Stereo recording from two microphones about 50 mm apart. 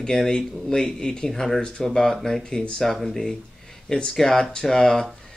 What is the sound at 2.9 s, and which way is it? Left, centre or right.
Speech, centre.